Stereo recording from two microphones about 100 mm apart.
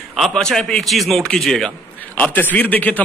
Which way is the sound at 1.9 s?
15° left (ahead or behind).